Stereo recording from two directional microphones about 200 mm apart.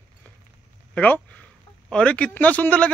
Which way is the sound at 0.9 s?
5° left (ahead or behind).